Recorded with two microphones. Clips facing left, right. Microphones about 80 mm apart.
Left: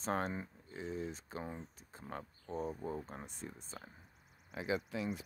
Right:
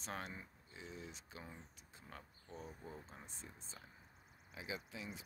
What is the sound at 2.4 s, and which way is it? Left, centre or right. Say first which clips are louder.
Speech: left 13 dB; left.